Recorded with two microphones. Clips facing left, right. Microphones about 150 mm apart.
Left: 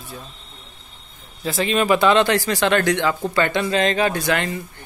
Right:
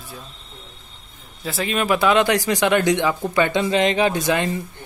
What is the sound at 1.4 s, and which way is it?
Speech, centre (ahead or behind).